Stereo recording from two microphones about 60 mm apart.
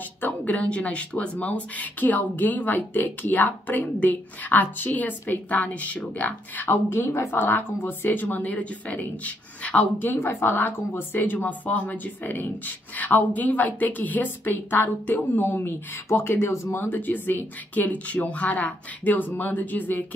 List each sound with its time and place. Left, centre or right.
0.2 s a woman's voice: left
6.7 s a woman's voice: left
10.0 s a woman's voice: left